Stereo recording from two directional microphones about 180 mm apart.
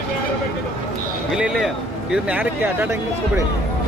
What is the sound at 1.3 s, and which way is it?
Speech, 5° right (ahead or behind).